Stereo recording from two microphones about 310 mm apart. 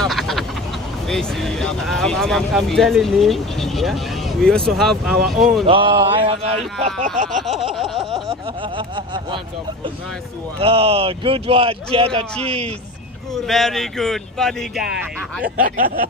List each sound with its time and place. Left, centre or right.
0.0 s duck: centre
1.0 s speech: centre
5.7 s a man's voice: centre
7.7 s speech: centre
8.0 s a man's voice: centre
10.6 s a man's voice: centre
13.3 s speech: centre
15.5 s speech: right